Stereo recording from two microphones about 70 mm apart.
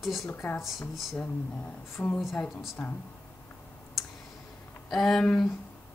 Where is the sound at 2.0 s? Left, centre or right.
Left.